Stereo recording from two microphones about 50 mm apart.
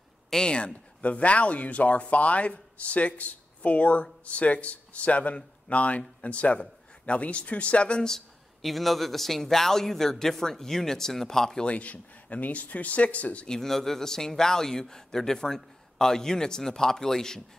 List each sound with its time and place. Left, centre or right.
0.3 s a man's voice: centre
1.0 s speech: left
8.6 s a man's voice: centre
11.6 s speech: left
13.5 s a man's voice: centre